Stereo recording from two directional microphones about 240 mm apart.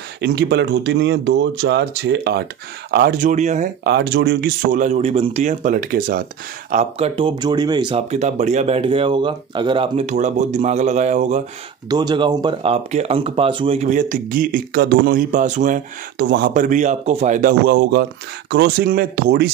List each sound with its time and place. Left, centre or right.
0.2 s speech: right
3.8 s speech: right
11.9 s speech: centre
16.2 s speech: right
16.5 s speech: right